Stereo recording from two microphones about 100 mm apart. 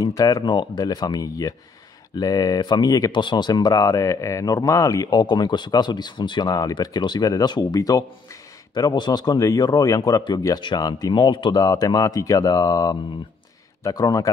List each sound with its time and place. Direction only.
0.0 s speech: 35° left (ahead or behind); by 11.6 s 55° left (ahead or behind)
11.6 s speech: 40° left (ahead or behind)